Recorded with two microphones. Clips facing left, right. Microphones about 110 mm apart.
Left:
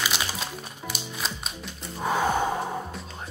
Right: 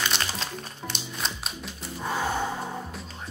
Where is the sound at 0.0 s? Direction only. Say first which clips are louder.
Even; 5° left (ahead or behind).